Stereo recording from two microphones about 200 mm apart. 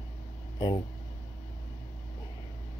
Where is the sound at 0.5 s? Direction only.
25° left (ahead or behind).